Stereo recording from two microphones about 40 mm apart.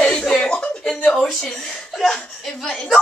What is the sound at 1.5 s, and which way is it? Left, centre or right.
Speech, centre.